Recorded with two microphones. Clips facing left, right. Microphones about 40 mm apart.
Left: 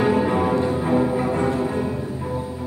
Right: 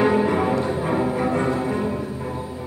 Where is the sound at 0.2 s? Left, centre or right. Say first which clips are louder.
Left 1 dB; centre.